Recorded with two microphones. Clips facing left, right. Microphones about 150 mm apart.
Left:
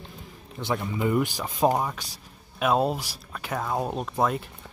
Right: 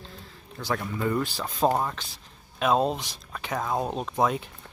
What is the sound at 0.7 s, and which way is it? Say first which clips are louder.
Speech: left 3 dB; 15° left (ahead or behind).